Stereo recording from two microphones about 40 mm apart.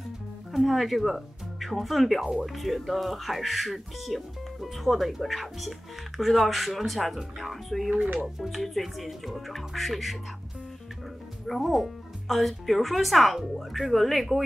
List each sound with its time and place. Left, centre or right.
0.5 s speech: centre
7.9 s speech: right
8.5 s speech: centre
11.4 s speech: centre